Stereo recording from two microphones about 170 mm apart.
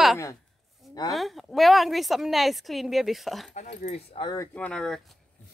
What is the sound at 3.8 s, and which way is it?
Speech, 35° left (ahead or behind).